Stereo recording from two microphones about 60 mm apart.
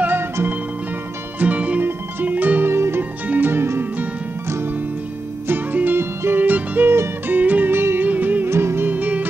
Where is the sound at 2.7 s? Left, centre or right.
Right.